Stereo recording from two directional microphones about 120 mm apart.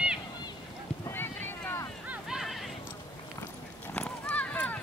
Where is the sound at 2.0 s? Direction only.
10° right (ahead or behind).